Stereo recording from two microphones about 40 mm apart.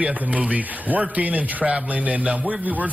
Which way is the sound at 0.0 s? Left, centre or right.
Right.